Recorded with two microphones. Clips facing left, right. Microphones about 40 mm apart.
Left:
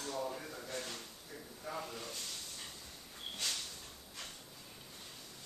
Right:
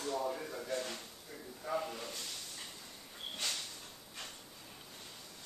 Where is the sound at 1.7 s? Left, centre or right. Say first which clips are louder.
Right 5 dB; centre.